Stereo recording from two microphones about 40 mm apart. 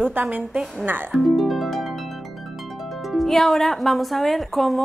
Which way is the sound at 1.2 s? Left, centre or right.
Centre.